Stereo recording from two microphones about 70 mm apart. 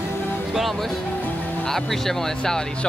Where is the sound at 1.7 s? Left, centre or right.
Centre.